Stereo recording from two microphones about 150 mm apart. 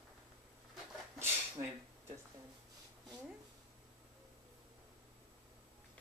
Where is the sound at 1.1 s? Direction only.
15° right (ahead or behind).